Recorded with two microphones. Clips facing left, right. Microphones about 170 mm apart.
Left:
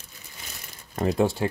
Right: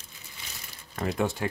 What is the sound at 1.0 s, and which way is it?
Speech, 30° left (ahead or behind).